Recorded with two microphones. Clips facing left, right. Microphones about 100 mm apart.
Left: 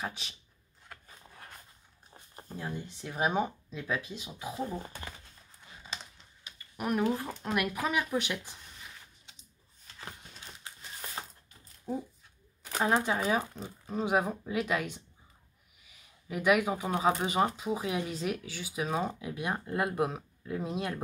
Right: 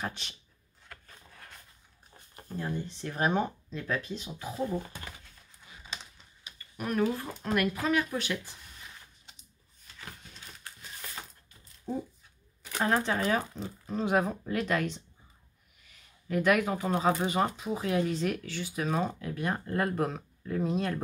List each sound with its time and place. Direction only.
0.0 s speech: 5° left (ahead or behind)
2.5 s speech: 5° left (ahead or behind)
6.8 s speech: 20° left (ahead or behind)
9.9 s a sound: 25° left (ahead or behind)
11.9 s speech: 10° left (ahead or behind)